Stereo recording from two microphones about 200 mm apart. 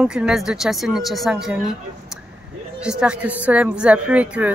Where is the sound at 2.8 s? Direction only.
5° right (ahead or behind).